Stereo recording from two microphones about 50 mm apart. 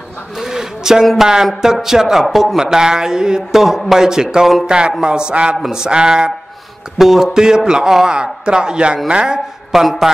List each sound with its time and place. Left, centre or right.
0.4 s a sound: centre
1.2 s a man's voice: centre
2.6 s a man's voice: centre
7.0 s a man's voice: centre
9.7 s speech: centre